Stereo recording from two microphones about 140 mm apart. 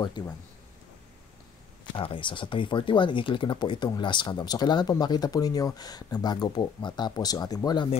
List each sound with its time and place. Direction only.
0.2 s speech: 35° left (ahead or behind)
2.0 s speech: 35° left (ahead or behind)